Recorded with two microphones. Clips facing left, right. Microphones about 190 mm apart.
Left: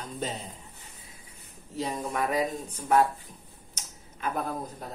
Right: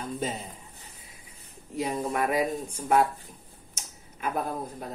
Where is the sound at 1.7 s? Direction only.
10° right (ahead or behind).